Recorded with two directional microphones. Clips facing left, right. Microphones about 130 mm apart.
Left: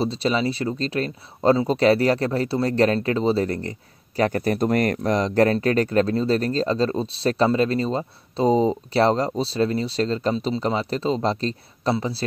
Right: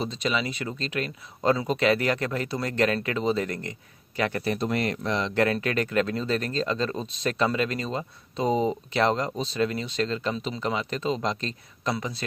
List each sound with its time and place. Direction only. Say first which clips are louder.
0.0 s speech: left 6 dB; 35° left (ahead or behind)